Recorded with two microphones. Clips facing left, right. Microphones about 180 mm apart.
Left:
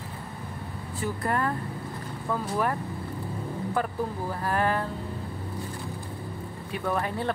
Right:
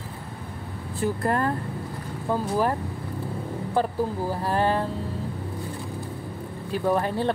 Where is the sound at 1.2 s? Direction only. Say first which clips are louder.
Right 1 dB; 35° right (ahead or behind).